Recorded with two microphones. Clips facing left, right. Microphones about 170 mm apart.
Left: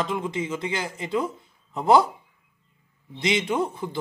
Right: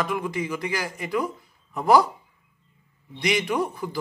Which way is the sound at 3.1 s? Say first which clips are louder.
Even; 25° left (ahead or behind).